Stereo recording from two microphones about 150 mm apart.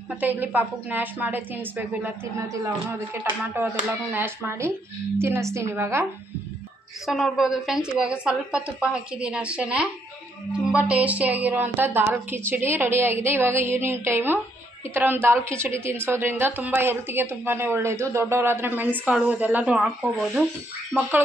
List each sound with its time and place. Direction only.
0.1 s a woman's voice: 10° right (ahead or behind)
7.1 s a woman's voice: centre (ahead or behind)